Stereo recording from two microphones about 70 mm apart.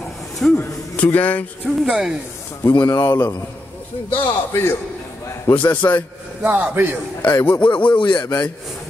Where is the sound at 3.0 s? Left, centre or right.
Left.